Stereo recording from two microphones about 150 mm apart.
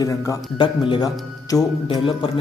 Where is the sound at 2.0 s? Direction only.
35° left (ahead or behind).